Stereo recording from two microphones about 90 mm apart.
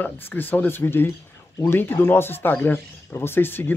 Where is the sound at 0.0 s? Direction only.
20° left (ahead or behind).